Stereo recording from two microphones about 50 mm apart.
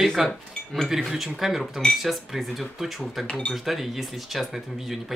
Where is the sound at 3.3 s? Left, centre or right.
Left.